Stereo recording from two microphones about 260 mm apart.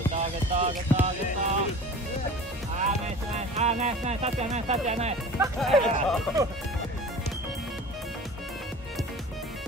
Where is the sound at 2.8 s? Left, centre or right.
Right.